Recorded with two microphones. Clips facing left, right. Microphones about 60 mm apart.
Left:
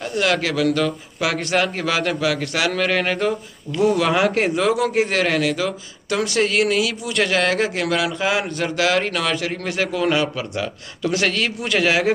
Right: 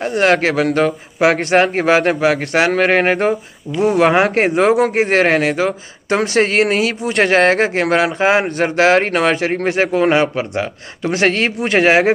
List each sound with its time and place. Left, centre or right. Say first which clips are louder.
0.0 s speech: right 7 dB; right